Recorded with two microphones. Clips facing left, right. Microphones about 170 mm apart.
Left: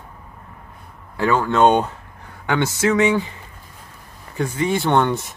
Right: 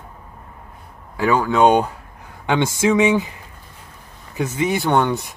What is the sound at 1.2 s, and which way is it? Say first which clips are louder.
Speech: right 1 dB; 10° right (ahead or behind).